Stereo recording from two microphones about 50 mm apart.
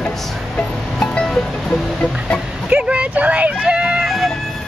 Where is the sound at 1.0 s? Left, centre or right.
Centre.